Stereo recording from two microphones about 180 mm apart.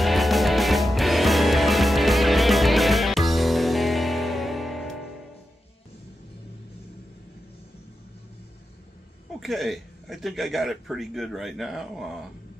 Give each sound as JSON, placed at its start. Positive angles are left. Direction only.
{"t": 0.0, "sound": "music", "side_deg": 0}
{"t": 9.4, "sound": "a man's voice", "side_deg": 0}